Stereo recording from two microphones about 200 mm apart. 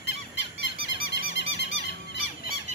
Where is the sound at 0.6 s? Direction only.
70° left (ahead or behind).